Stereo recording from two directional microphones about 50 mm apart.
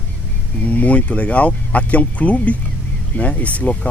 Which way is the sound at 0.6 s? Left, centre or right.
Left.